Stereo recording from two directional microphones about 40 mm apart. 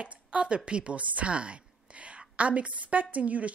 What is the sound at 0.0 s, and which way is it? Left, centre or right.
A woman's voice, right.